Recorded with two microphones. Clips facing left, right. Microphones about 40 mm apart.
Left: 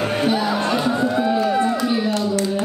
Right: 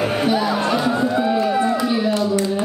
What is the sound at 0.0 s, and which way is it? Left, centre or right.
Music, centre.